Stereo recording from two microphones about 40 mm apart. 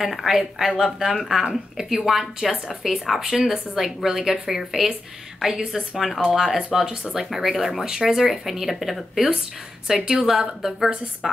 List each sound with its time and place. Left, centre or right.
0.0 s a woman's voice: centre